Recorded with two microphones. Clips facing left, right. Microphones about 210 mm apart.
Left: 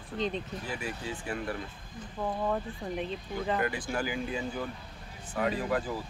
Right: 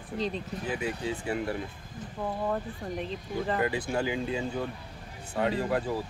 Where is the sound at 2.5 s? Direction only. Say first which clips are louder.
Even; centre (ahead or behind).